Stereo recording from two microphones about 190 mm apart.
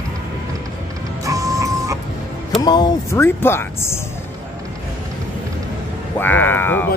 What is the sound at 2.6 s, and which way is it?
Speech, 20° left (ahead or behind).